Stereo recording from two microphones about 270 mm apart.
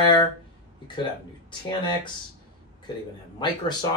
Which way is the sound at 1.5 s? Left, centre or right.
Centre.